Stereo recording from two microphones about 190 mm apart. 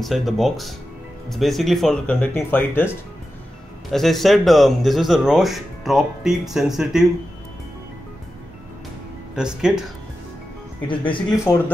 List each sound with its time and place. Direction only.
0.0 s speech: centre (ahead or behind)
3.9 s speech: centre (ahead or behind)
9.3 s speech: 5° right (ahead or behind)
10.9 s speech: 25° left (ahead or behind)
11.2 s a man's voice: 10° left (ahead or behind)